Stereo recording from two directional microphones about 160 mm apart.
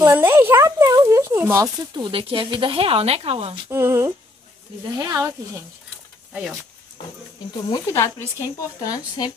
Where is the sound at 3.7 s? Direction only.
15° right (ahead or behind).